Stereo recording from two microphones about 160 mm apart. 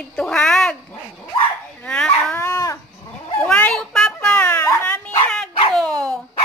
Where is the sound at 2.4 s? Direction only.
20° left (ahead or behind).